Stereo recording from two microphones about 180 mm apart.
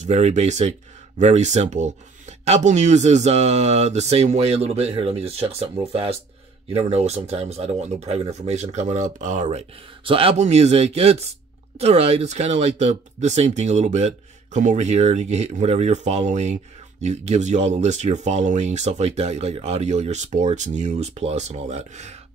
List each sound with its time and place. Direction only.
0.0 s speech: 40° right (ahead or behind)